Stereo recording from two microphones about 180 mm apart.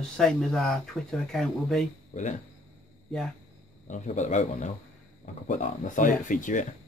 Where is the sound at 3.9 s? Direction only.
40° left (ahead or behind).